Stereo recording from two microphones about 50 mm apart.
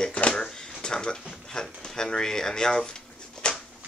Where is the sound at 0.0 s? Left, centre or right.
Left.